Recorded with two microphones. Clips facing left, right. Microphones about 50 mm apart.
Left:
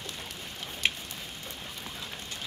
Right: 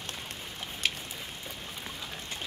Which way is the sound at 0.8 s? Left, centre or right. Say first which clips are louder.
Left 2 dB; left.